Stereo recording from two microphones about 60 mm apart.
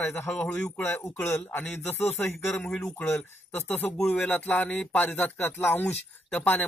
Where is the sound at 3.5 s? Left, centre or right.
Left.